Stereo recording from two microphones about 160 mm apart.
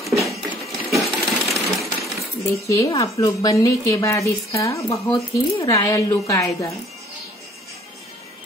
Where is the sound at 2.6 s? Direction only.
20° left (ahead or behind).